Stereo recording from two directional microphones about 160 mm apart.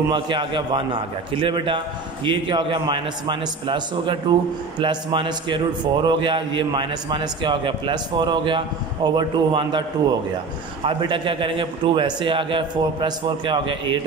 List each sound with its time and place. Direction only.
0.1 s a man's voice: 30° right (ahead or behind)